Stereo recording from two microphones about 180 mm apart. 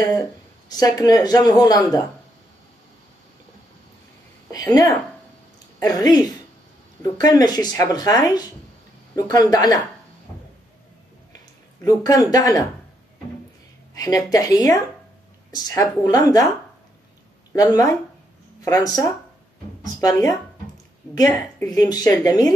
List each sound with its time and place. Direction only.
0.7 s a woman's voice: 20° left (ahead or behind)
4.5 s a woman's voice: 20° left (ahead or behind)
11.8 s a woman's voice: 20° left (ahead or behind)
13.9 s a woman's voice: 20° left (ahead or behind)
17.5 s a woman's voice: 20° left (ahead or behind)
21.6 s a woman's voice: 20° left (ahead or behind)